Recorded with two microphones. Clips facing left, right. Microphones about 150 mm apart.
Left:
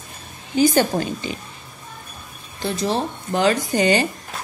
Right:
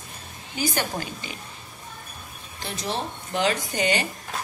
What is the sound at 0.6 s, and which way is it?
Speech, 30° left (ahead or behind).